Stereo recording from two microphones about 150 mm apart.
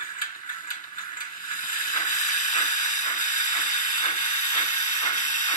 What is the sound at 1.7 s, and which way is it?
Steam, 60° left (ahead or behind).